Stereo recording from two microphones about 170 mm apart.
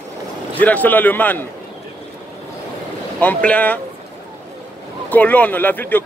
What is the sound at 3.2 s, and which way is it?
Speech, 10° left (ahead or behind).